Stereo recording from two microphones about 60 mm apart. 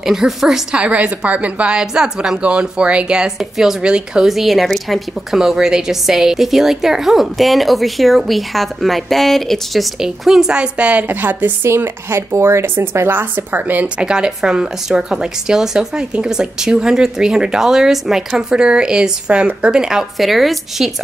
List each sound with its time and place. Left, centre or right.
0.0 s speech: centre
3.3 s a woman's voice: centre
4.3 s a woman's voice: centre
9.9 s speech: centre
10.5 s a woman's voice: centre
11.1 s a woman's voice: right
11.7 s speech: right
13.2 s a woman's voice: right
13.9 s speech: centre